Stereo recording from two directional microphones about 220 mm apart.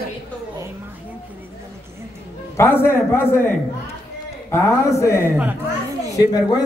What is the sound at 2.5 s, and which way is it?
A man's voice, 10° left (ahead or behind).